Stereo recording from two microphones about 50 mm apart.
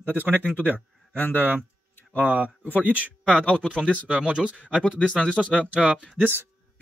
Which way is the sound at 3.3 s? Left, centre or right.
Centre.